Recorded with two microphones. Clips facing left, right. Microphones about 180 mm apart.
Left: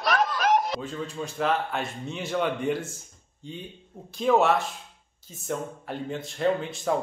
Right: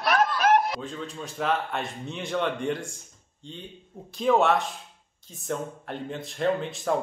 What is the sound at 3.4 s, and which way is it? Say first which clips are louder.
A man's voice: left 2 dB; 5° left (ahead or behind).